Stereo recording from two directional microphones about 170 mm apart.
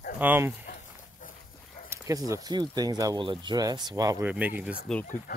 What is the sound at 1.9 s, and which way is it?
Speech, 20° right (ahead or behind).